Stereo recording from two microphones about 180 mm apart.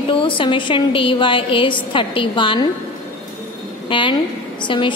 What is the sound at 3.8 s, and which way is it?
A woman's voice, 25° left (ahead or behind).